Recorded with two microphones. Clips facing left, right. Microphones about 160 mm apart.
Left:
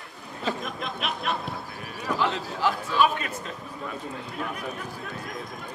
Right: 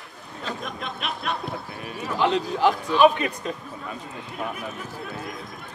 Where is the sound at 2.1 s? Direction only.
20° right (ahead or behind).